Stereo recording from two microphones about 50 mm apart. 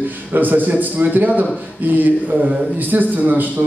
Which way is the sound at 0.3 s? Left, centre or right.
Right.